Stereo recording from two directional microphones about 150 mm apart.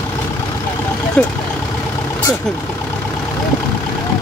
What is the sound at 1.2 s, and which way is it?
Speech, 10° left (ahead or behind).